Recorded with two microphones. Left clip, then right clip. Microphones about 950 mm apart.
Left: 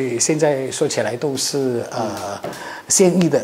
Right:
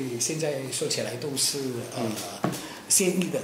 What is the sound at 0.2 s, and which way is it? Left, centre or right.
A woman's voice, left.